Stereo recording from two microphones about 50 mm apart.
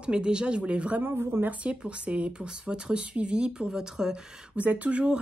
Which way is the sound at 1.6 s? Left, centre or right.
Right.